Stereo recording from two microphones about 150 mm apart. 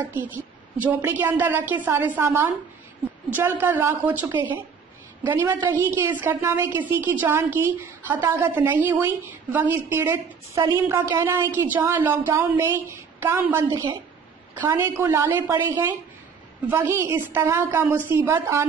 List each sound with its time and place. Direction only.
0.0 s a woman's voice: 15° right (ahead or behind)
5.6 s a woman's voice: 20° right (ahead or behind)
13.7 s a woman's voice: 25° right (ahead or behind)
14.5 s a woman's voice: 15° right (ahead or behind)